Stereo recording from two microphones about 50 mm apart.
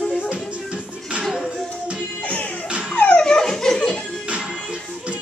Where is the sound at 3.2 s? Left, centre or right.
Centre.